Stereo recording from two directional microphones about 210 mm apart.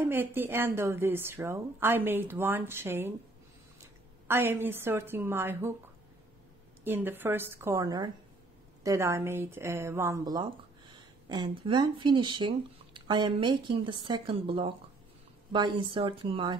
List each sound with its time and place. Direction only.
0.0 s a woman's voice: 10° right (ahead or behind)
4.3 s a woman's voice: 10° right (ahead or behind)
6.8 s a woman's voice: 10° right (ahead or behind)